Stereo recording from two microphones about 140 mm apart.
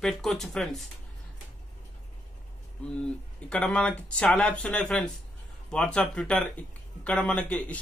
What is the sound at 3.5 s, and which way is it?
Speech, 5° left (ahead or behind).